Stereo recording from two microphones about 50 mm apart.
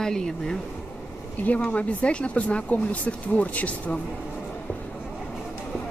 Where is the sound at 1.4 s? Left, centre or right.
Left.